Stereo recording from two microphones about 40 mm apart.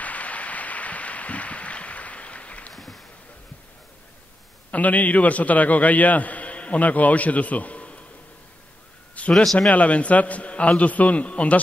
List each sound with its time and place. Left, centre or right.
0.0 s a sound: left
2.7 s boat: centre
4.6 s a man's voice: left
9.3 s a man's voice: centre
9.7 s a man's voice: left